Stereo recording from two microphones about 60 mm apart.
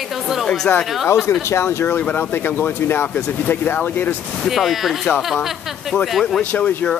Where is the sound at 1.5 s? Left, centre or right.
Left.